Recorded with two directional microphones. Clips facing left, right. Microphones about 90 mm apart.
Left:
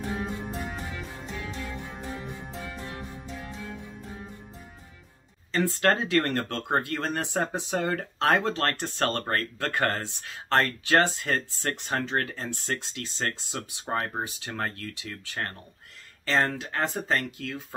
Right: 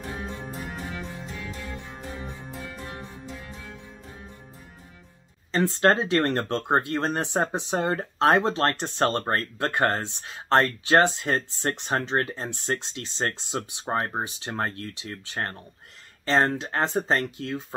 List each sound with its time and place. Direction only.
5.5 s speech: 25° right (ahead or behind)